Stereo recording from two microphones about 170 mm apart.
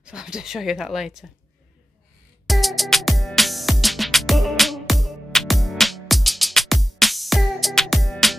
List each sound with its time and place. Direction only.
0.0 s speech: 5° right (ahead or behind)
2.4 s music: centre (ahead or behind)